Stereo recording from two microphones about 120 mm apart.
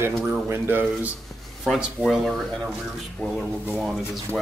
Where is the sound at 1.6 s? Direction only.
Centre (ahead or behind).